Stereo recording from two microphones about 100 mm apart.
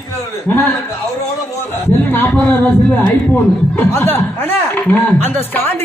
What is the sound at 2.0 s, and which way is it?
Speech, 15° left (ahead or behind).